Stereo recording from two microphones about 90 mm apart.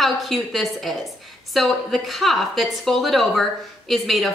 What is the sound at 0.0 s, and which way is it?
A woman's voice, centre (ahead or behind).